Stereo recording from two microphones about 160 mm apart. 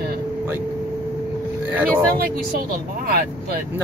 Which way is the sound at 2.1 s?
65° right (ahead or behind).